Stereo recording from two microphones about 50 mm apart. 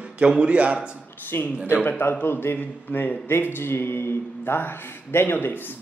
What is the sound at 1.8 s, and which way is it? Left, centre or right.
Speech, left.